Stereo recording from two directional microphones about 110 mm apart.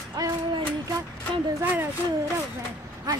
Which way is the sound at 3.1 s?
35° right (ahead or behind).